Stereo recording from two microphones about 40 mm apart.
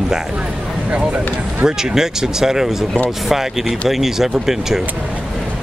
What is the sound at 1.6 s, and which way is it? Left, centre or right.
Speech, centre.